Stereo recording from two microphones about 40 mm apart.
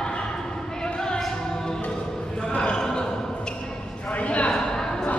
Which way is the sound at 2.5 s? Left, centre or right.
Centre.